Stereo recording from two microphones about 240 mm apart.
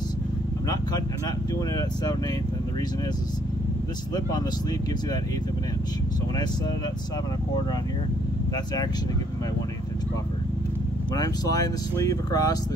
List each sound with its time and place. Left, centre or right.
4.1 s speech: centre
11.1 s speech: centre